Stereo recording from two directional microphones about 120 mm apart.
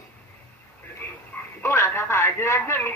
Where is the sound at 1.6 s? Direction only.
20° left (ahead or behind).